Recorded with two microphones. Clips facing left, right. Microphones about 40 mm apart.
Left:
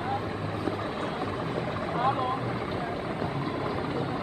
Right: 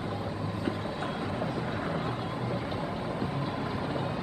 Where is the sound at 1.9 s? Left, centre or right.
Left.